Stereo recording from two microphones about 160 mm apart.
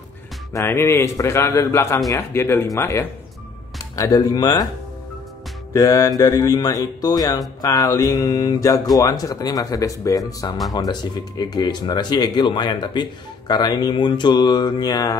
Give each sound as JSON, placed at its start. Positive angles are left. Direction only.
{"t": 0.5, "sound": "a man's voice", "side_deg": 15}
{"t": 5.7, "sound": "speech", "side_deg": 20}